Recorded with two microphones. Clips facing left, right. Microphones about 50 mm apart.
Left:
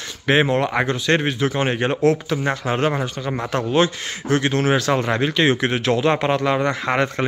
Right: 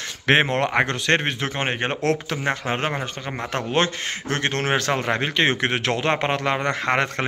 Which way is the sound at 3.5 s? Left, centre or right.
Right.